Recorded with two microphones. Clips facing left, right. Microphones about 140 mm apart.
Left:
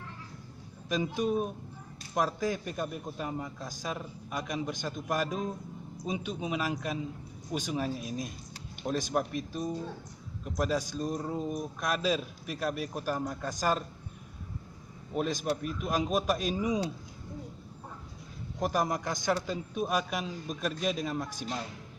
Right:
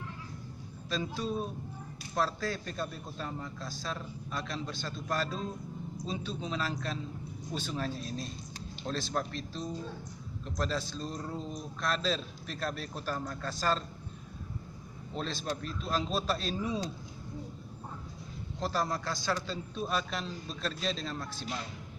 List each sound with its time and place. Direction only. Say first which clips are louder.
0.8 s speech: left 5 dB; 15° left (ahead or behind)
15.1 s speech: left 5 dB; 15° left (ahead or behind)
18.6 s speech: left 3 dB; 15° left (ahead or behind)